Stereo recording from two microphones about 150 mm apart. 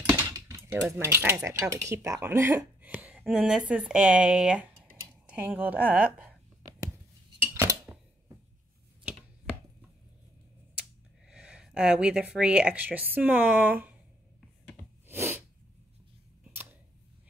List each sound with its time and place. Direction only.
0.1 s a sound: 20° right (ahead or behind)
0.9 s speech: 15° right (ahead or behind)
7.5 s dishes: 20° right (ahead or behind)
11.2 s speech: 5° right (ahead or behind)
15.0 s sneeze: 15° right (ahead or behind)